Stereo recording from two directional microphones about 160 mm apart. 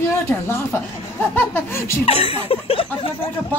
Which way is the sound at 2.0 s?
40° left (ahead or behind).